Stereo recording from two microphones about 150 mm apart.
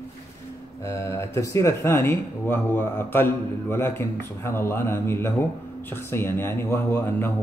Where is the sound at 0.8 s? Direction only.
20° left (ahead or behind).